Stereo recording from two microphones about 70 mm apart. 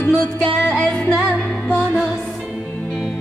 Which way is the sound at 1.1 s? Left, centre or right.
Centre.